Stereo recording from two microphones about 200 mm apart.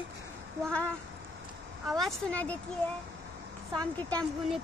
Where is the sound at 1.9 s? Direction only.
Centre (ahead or behind).